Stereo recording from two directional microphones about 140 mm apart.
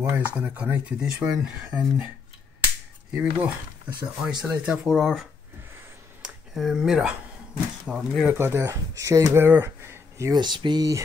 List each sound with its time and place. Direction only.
0.0 s speech: 15° right (ahead or behind)
3.2 s speech: 10° right (ahead or behind)
6.2 s speech: centre (ahead or behind)
8.4 s speech: 15° right (ahead or behind)